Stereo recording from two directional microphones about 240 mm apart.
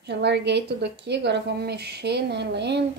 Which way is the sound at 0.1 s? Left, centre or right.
Right.